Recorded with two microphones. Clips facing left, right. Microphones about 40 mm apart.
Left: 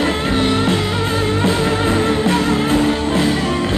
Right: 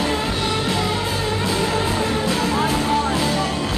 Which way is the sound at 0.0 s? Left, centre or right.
Left.